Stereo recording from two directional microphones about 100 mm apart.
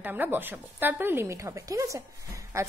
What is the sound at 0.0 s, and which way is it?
A woman's voice, 20° right (ahead or behind).